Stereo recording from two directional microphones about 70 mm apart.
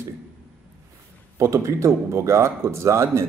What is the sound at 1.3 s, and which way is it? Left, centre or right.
A man's voice, right.